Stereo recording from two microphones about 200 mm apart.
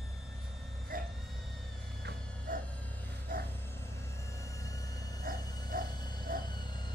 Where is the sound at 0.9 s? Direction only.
45° right (ahead or behind).